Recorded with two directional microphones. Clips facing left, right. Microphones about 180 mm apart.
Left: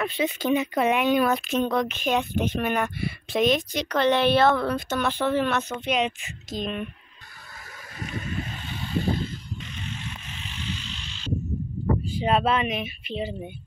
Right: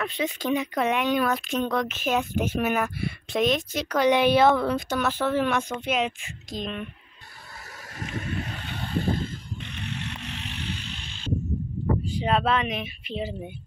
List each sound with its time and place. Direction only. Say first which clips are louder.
0.0 s speech: left 2 dB; centre (ahead or behind)
8.2 s vehicle: right 1 dB; 65° right (ahead or behind)
12.0 s speech: left 2 dB; 5° left (ahead or behind)